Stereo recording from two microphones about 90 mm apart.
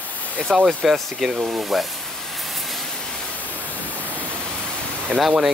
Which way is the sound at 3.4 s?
20° left (ahead or behind).